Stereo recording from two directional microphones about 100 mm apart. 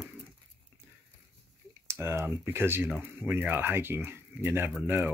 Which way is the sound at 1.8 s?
25° right (ahead or behind).